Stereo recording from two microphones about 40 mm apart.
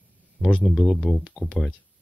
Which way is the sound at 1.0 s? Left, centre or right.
Left.